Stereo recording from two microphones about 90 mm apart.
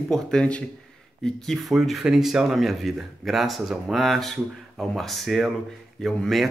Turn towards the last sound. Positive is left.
turn(degrees=0)  # may be behind; listen again after turning